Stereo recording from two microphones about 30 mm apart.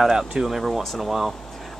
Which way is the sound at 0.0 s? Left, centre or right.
Centre.